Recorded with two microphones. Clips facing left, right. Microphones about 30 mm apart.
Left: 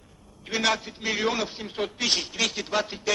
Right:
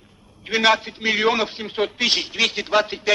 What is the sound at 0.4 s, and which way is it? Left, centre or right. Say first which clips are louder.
A man's voice: right 7 dB; right.